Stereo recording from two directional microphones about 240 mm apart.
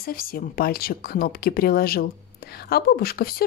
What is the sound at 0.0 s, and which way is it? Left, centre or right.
Speech, left.